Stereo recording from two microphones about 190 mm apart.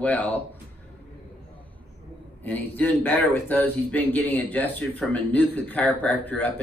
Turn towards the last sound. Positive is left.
turn(degrees=5)  # may be behind; listen again after turning